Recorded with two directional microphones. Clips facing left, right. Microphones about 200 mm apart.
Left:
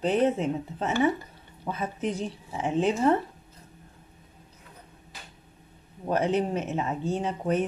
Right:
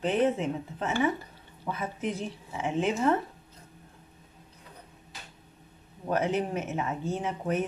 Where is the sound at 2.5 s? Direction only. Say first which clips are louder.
Left 3 dB; 35° left (ahead or behind).